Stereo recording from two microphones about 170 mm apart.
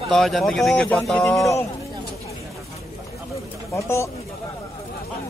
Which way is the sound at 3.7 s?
15° left (ahead or behind).